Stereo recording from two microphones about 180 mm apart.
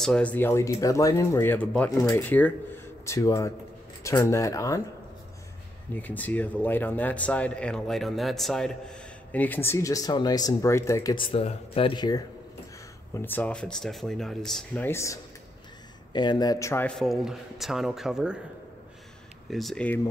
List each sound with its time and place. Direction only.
0.0 s a man's voice: 5° left (ahead or behind)
5.9 s a man's voice: 10° left (ahead or behind); by 12.2 s 25° left (ahead or behind)
13.1 s a man's voice: 10° left (ahead or behind)
16.1 s a man's voice: 25° left (ahead or behind); by 18.4 s 5° right (ahead or behind)
19.5 s a man's voice: centre (ahead or behind)